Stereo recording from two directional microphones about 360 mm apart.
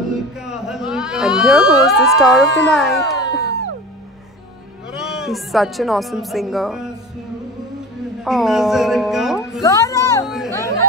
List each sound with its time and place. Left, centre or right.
0.4 s a sound: centre
1.9 s speech: centre
4.9 s speech: centre
8.2 s speech: centre
9.6 s chatter: centre